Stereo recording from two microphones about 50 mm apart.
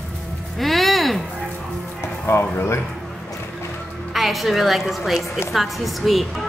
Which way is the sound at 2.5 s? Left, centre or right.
Left.